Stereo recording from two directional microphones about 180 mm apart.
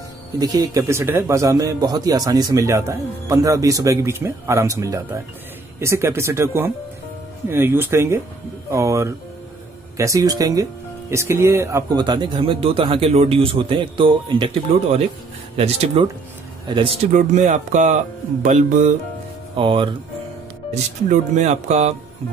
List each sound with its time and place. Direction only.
0.4 s speech: 20° right (ahead or behind)
15.5 s music: 35° right (ahead or behind)
17.1 s speech: 45° right (ahead or behind)
19.5 s speech: 30° right (ahead or behind)
21.1 s music: 40° right (ahead or behind)